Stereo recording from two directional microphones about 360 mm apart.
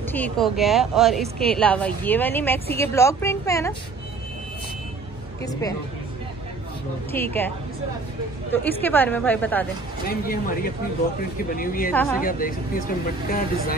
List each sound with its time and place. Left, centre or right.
0.1 s a woman's voice: centre
5.4 s a woman's voice: centre
7.1 s a woman's voice: centre
8.8 s a woman's voice: centre
10.0 s speech: left
11.9 s a woman's voice: centre
12.2 s speech: left